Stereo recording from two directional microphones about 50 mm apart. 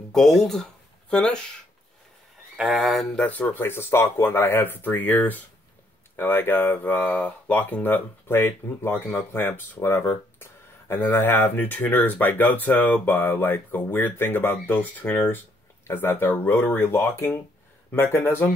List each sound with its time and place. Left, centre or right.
0.1 s speech: centre
2.7 s speech: centre
3.2 s speech: left
3.7 s speech: left
6.1 s speech: left
6.8 s speech: left
9.8 s speech: left
14.8 s speech: left
16.8 s speech: left